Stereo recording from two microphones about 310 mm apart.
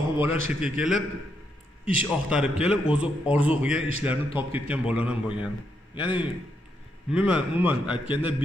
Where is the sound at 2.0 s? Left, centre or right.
Centre.